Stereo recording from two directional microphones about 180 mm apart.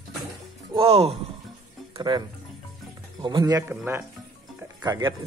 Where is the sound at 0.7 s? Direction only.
35° right (ahead or behind).